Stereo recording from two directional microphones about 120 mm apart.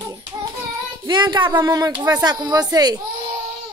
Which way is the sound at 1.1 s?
40° right (ahead or behind).